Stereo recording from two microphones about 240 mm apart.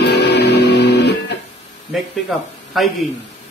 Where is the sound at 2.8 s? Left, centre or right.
Centre.